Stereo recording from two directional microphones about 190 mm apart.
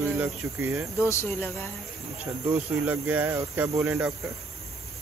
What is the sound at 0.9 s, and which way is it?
Speech, 15° left (ahead or behind).